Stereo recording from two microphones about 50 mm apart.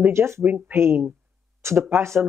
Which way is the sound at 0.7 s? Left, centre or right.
Right.